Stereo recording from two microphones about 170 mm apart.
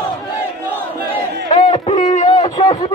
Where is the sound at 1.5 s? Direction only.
35° left (ahead or behind).